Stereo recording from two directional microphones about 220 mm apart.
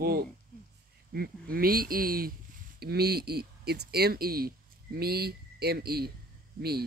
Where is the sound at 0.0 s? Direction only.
45° right (ahead or behind).